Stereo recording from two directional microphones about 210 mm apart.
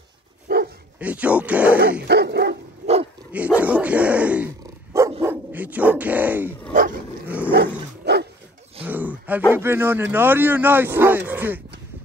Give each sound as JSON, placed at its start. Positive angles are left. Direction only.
{"t": 0.5, "sound": "dog", "side_deg": -45}
{"t": 0.9, "sound": "speech", "side_deg": -5}
{"t": 2.0, "sound": "dog", "side_deg": -50}
{"t": 3.3, "sound": "dog", "side_deg": -5}
{"t": 5.2, "sound": "speech", "side_deg": -10}
{"t": 6.7, "sound": "dog", "side_deg": -40}
{"t": 7.2, "sound": "dog", "side_deg": -5}
{"t": 7.5, "sound": "dog", "side_deg": -55}
{"t": 8.8, "sound": "dog", "side_deg": -10}
{"t": 9.5, "sound": "speech", "side_deg": -10}